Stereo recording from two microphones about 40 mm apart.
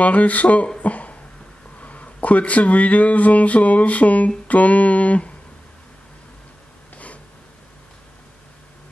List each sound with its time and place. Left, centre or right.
0.0 s speech: left
0.7 s a sound: left
1.8 s speech: left